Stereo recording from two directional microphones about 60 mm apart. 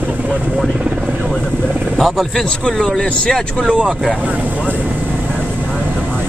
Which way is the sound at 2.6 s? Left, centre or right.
Centre.